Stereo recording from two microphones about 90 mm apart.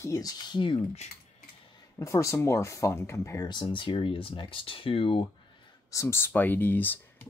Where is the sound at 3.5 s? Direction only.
60° left (ahead or behind); by 5.2 s 80° left.